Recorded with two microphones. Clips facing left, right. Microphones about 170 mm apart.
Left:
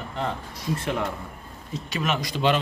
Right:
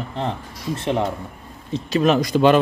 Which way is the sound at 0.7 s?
30° right (ahead or behind).